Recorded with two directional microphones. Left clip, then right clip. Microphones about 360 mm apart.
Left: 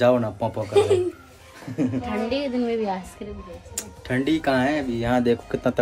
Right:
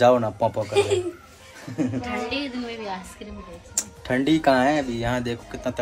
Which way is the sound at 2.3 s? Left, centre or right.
Left.